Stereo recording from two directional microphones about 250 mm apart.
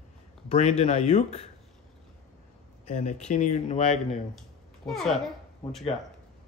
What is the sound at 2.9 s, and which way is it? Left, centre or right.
Speech, left.